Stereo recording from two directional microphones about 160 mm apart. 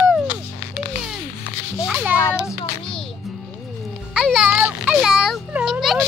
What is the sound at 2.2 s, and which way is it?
Child singing, 20° left (ahead or behind).